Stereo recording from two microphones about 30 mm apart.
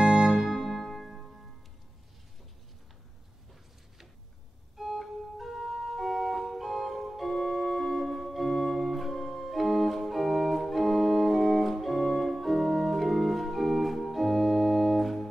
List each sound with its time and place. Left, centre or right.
0.0 s music: centre
0.3 s music: centre
4.7 s organ: centre